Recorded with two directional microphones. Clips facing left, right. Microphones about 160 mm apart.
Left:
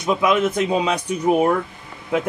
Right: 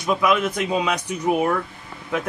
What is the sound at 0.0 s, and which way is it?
Speech, 25° left (ahead or behind).